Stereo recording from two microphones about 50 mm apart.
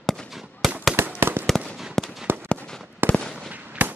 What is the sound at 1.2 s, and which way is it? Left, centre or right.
Fireworks, right.